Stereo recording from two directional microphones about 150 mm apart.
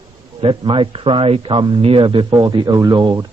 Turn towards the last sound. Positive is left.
turn(degrees=-25)  # may be behind; listen again after turning